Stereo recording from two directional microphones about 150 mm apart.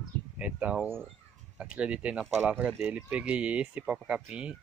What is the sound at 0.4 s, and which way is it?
Speech, 5° right (ahead or behind).